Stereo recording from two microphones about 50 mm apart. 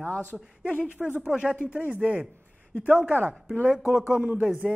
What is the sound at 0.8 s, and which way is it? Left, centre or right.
Speech, centre.